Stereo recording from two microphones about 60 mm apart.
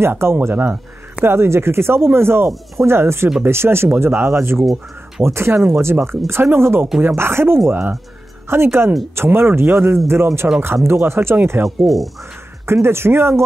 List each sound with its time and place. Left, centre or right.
0.0 s speech: right
11.8 s speech: centre
12.6 s speech: right